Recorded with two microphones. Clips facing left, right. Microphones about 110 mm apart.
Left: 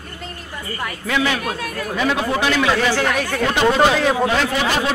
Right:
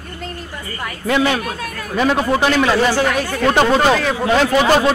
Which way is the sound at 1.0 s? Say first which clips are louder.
Right 4 dB; 40° right (ahead or behind).